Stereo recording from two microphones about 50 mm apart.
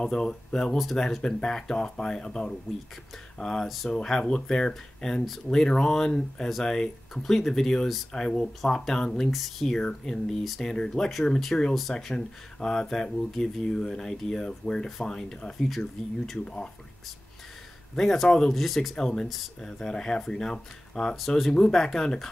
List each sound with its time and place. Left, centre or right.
0.0 s speech: centre
3.6 s speech: centre
3.9 s speech: centre
9.3 s speech: centre
9.8 s speech: centre
10.4 s speech: centre
15.7 s speech: centre
17.9 s speech: centre
18.9 s speech: centre
19.2 s speech: centre
19.6 s speech: centre